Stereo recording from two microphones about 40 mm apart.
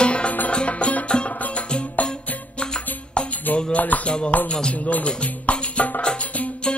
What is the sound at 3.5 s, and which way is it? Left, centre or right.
Music, left.